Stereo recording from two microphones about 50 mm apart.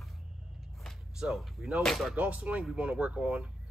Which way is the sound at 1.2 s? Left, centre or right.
Centre.